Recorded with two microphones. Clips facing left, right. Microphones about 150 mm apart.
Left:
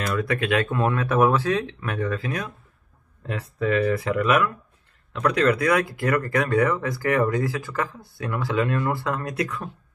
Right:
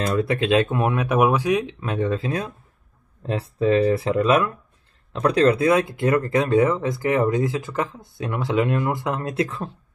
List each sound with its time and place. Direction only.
0.0 s speech: 30° right (ahead or behind)